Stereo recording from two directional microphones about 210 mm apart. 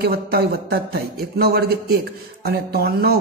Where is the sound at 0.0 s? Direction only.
50° right (ahead or behind).